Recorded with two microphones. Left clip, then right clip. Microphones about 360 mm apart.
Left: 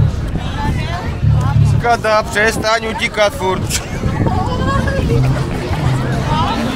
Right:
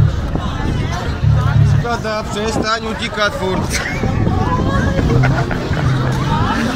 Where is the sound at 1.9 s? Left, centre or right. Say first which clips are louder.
Left 9 dB; left.